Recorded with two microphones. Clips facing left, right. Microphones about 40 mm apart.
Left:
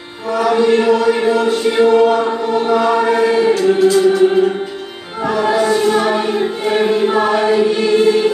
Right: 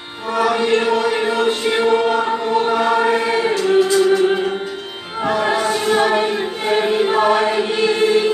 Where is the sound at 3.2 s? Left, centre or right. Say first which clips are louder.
Left 5 dB; right.